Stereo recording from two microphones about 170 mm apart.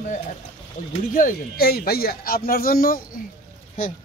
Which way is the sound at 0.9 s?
50° left (ahead or behind).